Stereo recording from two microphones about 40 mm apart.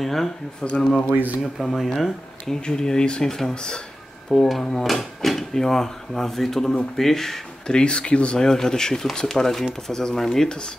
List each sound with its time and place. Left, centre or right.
0.0 s speech: centre
0.6 s speech: left
1.6 s speech: centre
4.3 s speech: centre
7.7 s speech: left
8.5 s speech: centre